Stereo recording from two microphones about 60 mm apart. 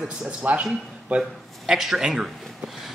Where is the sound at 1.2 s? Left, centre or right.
Centre.